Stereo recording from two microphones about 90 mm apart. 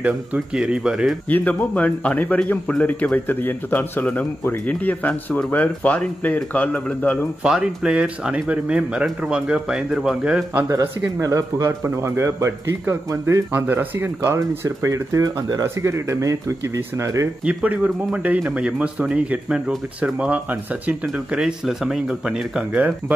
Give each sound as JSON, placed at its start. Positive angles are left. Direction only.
{"t": 0.0, "sound": "a man's voice", "side_deg": -15}
{"t": 1.3, "sound": "speech", "side_deg": 15}
{"t": 7.4, "sound": "a man's voice", "side_deg": -10}
{"t": 10.7, "sound": "speech", "side_deg": -35}
{"t": 14.9, "sound": "speech", "side_deg": -40}
{"t": 17.5, "sound": "a man's voice", "side_deg": -15}